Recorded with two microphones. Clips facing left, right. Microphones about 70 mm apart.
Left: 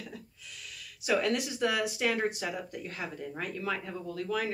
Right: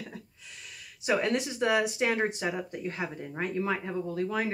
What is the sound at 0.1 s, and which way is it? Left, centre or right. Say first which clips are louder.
Speech: right 1 dB; right.